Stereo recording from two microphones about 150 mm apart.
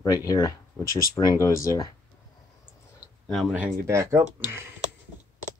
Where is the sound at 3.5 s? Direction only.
15° right (ahead or behind).